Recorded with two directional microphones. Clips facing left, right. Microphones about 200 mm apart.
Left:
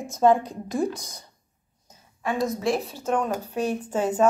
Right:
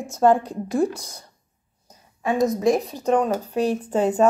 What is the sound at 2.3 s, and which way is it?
Speech, 20° right (ahead or behind).